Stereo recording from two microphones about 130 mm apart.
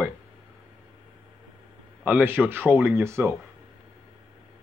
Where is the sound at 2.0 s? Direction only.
15° right (ahead or behind).